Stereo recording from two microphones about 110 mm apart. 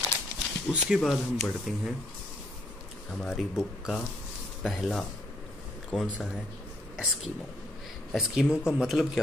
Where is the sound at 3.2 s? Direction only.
Centre (ahead or behind).